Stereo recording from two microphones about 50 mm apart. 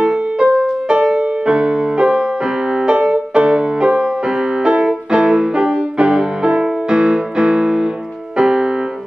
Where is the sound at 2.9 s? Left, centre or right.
Right.